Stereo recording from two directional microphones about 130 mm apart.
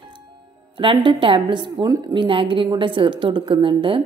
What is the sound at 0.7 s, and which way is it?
A woman's voice, 40° right (ahead or behind).